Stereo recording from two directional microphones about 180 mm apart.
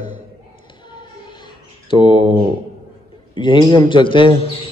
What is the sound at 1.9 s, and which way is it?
Speech, 25° left (ahead or behind).